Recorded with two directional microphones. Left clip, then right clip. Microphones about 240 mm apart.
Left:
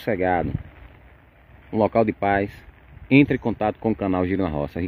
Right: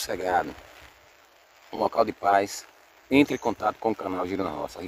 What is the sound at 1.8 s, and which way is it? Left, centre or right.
Speech, centre.